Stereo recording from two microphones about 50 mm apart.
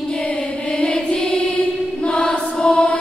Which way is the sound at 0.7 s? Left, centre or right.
Centre.